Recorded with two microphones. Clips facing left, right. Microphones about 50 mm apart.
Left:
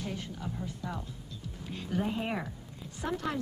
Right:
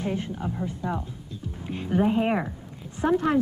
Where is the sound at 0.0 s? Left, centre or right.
Right.